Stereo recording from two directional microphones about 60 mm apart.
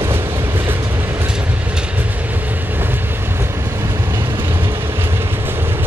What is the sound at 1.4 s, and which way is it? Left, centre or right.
Train, right.